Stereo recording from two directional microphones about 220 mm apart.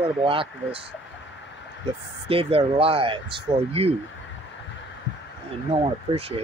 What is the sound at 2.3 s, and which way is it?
Speech, 25° right (ahead or behind).